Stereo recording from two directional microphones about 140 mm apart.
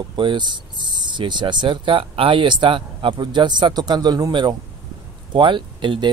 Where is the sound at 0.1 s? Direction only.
35° right (ahead or behind).